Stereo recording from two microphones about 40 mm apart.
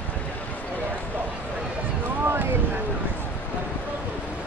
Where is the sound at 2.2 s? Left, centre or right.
Right.